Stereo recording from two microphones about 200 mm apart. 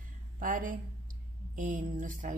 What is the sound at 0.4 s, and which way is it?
A woman's voice, 40° right (ahead or behind).